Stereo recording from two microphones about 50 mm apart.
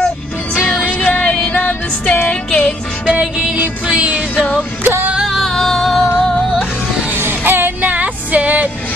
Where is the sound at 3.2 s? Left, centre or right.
Centre.